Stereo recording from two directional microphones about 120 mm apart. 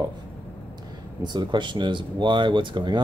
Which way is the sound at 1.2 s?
40° right (ahead or behind).